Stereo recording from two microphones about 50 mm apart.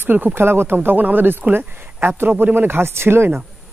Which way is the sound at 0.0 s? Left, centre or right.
Right.